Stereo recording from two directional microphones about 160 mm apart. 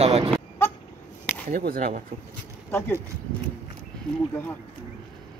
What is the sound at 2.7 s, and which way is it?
Speech, 15° left (ahead or behind).